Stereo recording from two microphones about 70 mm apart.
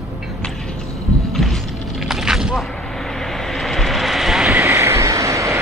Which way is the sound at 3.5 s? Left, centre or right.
Centre.